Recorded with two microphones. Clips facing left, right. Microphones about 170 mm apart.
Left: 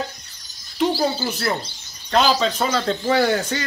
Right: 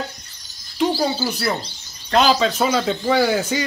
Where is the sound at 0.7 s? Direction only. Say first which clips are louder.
Right 1 dB; centre (ahead or behind).